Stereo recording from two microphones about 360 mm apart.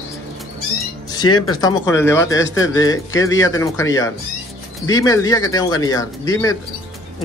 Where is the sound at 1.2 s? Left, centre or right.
Left.